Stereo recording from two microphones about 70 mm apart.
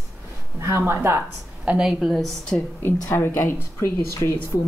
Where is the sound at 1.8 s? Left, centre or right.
Centre.